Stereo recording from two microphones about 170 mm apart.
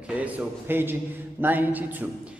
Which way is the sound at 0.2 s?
10° right (ahead or behind).